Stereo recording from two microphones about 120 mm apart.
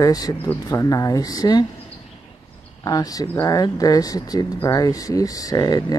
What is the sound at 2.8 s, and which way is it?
Speech, 30° left (ahead or behind).